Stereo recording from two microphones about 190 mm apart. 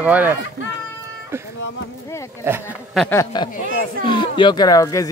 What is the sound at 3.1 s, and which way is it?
Speech, 15° left (ahead or behind).